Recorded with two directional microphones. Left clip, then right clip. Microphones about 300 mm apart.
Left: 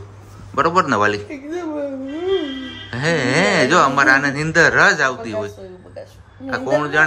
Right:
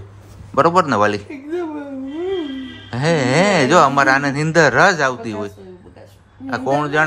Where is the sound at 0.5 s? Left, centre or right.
Centre.